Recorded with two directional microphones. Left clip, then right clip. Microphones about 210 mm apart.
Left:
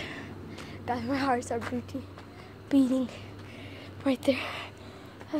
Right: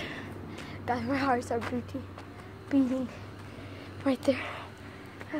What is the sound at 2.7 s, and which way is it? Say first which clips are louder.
Speech: left 2 dB; 25° left (ahead or behind).